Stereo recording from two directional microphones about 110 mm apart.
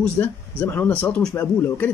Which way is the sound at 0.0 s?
15° left (ahead or behind).